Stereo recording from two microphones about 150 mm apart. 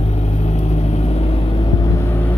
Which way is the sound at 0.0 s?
45° left (ahead or behind).